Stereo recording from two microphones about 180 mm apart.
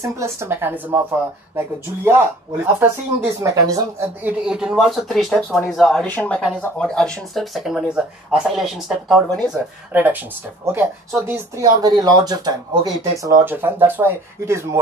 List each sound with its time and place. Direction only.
0.0 s speech: 15° right (ahead or behind)